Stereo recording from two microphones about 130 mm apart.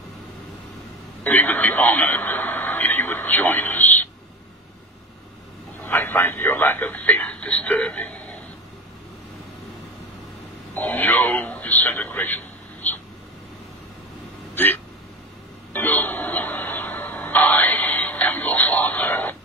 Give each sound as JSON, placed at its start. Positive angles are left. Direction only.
{"t": 1.2, "sound": "radio", "side_deg": 15}
{"t": 5.9, "sound": "speech", "side_deg": 15}
{"t": 10.7, "sound": "speech", "side_deg": 15}
{"t": 11.5, "sound": "a sound", "side_deg": 10}
{"t": 14.5, "sound": "hiccup", "side_deg": 15}
{"t": 15.7, "sound": "music", "side_deg": 15}